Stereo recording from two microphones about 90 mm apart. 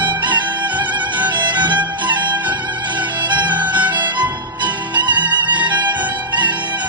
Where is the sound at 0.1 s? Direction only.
60° right (ahead or behind).